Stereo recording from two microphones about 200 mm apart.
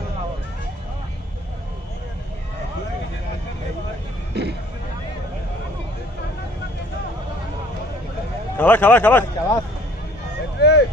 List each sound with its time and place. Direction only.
4.3 s a sound: 55° right (ahead or behind)
8.5 s a man's voice: 10° left (ahead or behind)
10.6 s vehicle: 55° left (ahead or behind)